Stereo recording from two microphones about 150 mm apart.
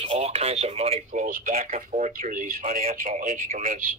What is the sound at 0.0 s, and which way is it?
Speech, 40° right (ahead or behind).